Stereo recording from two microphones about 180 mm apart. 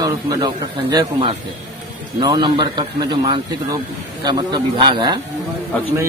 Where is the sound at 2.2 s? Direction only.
20° right (ahead or behind).